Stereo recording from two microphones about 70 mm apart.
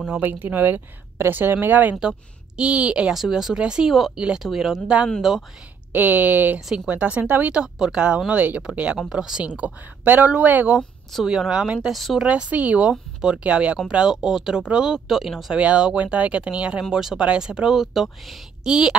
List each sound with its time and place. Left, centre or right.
0.0 s speech: right
2.0 s a woman's voice: centre
3.2 s a woman's voice: centre
4.8 s a woman's voice: centre
5.9 s a woman's voice: right
11.2 s a woman's voice: centre
11.9 s speech: centre
12.3 s a woman's voice: centre
15.6 s a woman's voice: centre